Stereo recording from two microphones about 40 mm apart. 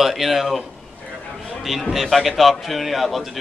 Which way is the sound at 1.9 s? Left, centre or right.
Centre.